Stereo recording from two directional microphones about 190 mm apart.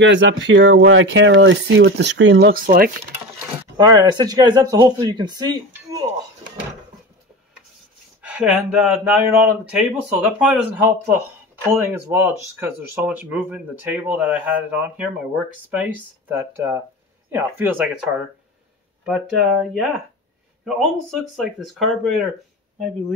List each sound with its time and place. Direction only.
0.0 s speech: 70° right (ahead or behind); by 2.9 s 50° right (ahead or behind)
3.7 s speech: 20° right (ahead or behind)
5.7 s a sound: 15° right (ahead or behind)
8.2 s speech: 5° right (ahead or behind)
19.0 s speech: 5° right (ahead or behind)